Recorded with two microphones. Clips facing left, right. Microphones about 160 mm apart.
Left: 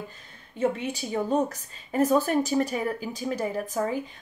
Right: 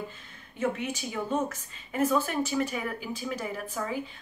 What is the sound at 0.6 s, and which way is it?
Speech, 30° left (ahead or behind).